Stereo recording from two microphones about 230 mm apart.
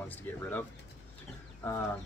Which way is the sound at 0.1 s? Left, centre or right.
Centre.